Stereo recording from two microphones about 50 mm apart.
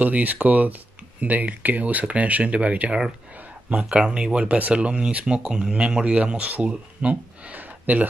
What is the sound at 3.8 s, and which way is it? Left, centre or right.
Speech, centre.